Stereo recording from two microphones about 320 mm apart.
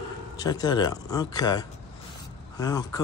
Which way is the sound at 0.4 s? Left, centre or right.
Centre.